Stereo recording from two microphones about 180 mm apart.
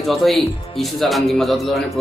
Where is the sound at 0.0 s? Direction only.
Centre (ahead or behind).